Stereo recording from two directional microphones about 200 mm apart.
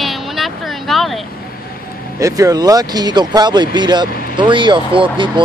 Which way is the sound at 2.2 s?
15° right (ahead or behind).